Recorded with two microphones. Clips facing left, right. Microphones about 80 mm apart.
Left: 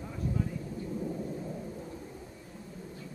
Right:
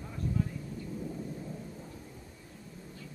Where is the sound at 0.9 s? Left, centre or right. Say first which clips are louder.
Left 4 dB; centre.